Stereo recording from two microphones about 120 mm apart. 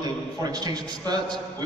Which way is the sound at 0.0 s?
35° right (ahead or behind).